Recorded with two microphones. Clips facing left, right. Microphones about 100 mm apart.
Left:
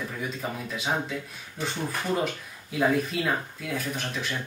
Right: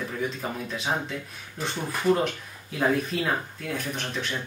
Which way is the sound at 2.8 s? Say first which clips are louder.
Even; centre (ahead or behind).